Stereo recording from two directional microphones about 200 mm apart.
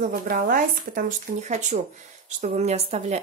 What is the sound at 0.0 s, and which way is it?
Speech, 45° right (ahead or behind).